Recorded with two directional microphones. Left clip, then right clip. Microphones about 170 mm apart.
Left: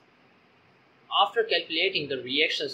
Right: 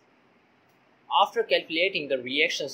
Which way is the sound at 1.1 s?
40° right (ahead or behind).